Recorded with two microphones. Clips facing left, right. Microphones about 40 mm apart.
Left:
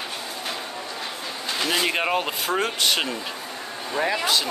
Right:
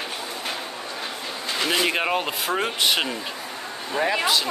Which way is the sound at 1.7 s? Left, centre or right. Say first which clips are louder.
Even; centre.